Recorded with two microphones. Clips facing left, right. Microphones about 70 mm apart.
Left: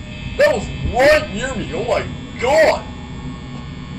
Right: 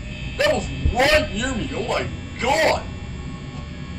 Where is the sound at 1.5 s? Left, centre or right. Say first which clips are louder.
Left 7 dB; left.